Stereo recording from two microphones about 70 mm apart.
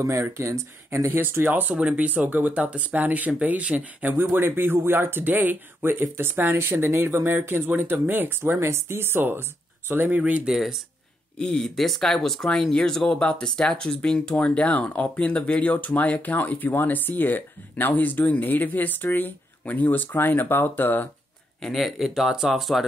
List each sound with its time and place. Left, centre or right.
0.0 s speech: right
4.1 s speech: right
10.4 s speech: centre
11.3 s speech: centre; by 21.1 s left
21.5 s speech: centre